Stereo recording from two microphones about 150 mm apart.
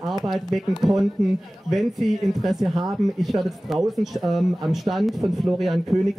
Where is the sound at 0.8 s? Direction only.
Centre (ahead or behind).